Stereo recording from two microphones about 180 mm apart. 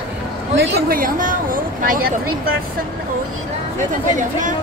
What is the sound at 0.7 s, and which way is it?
Speech, 55° right (ahead or behind).